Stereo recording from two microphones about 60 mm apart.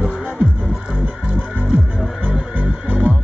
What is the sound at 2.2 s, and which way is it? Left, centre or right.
Music, right.